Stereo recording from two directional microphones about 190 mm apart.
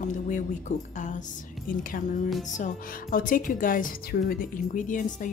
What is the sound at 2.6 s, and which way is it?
A woman's voice, 45° left (ahead or behind).